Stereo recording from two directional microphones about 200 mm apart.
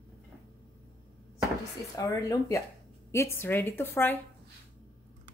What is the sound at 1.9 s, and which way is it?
Speech, 15° left (ahead or behind).